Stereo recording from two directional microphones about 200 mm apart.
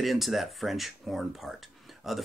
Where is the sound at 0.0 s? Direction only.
Centre (ahead or behind).